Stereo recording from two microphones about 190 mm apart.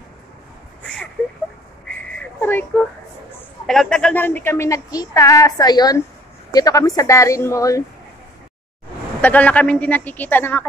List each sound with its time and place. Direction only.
2.7 s speech: 5° left (ahead or behind)
9.2 s speech: 10° left (ahead or behind)